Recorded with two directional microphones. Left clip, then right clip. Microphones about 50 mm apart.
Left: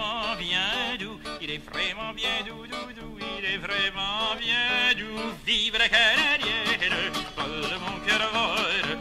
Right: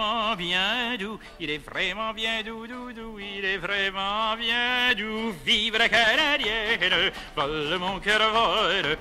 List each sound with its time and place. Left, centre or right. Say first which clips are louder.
0.0 s music: right 3 dB; right
3.6 s music: even; right